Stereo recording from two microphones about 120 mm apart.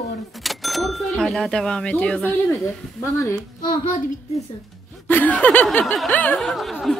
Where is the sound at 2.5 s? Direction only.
25° left (ahead or behind).